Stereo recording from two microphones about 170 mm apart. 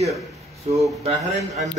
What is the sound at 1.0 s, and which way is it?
Speech, 40° right (ahead or behind).